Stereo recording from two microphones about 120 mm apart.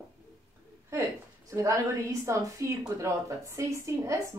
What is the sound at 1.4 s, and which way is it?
Speech, 25° right (ahead or behind).